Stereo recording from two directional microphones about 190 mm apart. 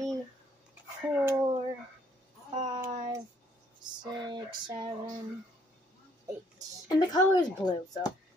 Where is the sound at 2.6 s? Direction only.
25° right (ahead or behind).